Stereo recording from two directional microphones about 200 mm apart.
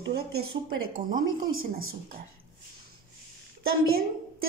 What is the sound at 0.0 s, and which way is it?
Speech, 55° right (ahead or behind).